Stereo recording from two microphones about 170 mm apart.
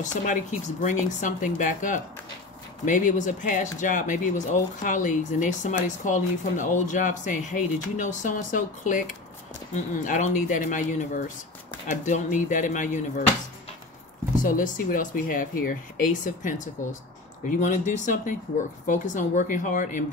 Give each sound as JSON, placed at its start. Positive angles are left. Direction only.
{"t": 0.0, "sound": "speech", "side_deg": 45}
{"t": 14.4, "sound": "speech", "side_deg": 50}